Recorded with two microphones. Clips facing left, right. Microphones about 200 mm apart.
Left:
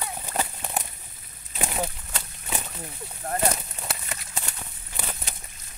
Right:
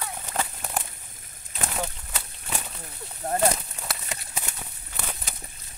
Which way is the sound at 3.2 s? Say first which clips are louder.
Right 2 dB; 20° right (ahead or behind).